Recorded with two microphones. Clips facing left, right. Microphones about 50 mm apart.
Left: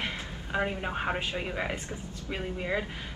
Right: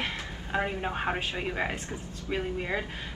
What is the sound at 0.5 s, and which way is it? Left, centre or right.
A woman's voice, centre.